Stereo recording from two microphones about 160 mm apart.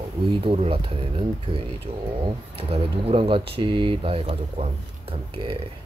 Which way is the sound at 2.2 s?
35° right (ahead or behind).